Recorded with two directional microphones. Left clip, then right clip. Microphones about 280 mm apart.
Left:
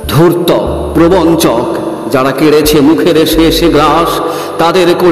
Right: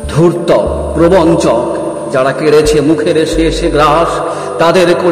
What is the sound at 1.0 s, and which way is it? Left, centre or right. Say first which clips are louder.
A man's voice: even; left.